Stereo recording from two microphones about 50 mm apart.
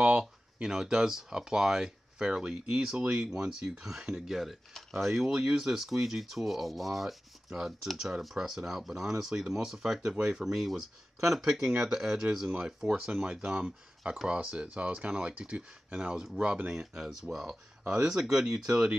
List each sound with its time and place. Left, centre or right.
0.0 s speech: centre
16.7 s speech: centre